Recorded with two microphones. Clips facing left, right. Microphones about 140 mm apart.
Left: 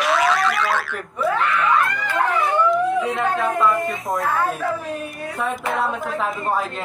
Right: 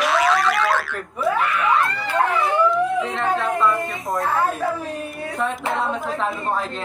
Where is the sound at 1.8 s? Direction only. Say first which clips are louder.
Right 1 dB; 35° right (ahead or behind).